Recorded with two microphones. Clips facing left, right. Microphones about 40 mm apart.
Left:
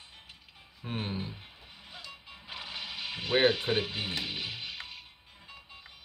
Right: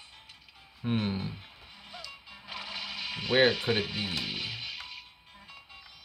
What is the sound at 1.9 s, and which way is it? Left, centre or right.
Music, left.